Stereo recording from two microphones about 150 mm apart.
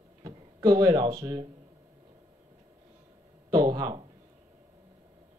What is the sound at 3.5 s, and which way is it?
Speech, 25° right (ahead or behind).